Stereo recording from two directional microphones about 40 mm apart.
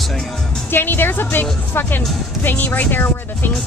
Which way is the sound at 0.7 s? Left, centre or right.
Left.